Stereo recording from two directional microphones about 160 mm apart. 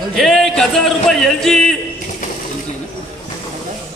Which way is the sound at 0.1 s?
Centre (ahead or behind).